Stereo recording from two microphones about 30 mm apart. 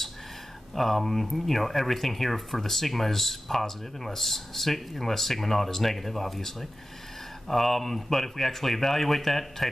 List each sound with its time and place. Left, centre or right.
0.7 s speech: centre